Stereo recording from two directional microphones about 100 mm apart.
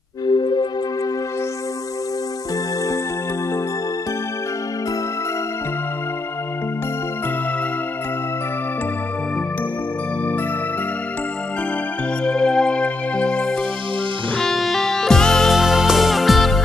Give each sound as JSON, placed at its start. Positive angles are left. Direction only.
{"t": 0.3, "sound": "music", "side_deg": 50}
{"t": 12.3, "sound": "music", "side_deg": 5}